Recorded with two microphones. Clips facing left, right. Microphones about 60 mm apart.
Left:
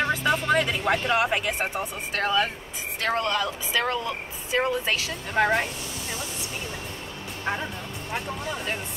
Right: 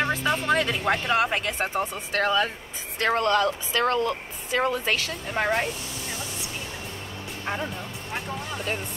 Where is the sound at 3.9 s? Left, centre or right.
Right.